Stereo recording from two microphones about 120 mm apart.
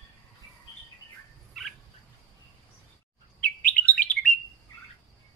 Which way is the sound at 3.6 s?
15° left (ahead or behind).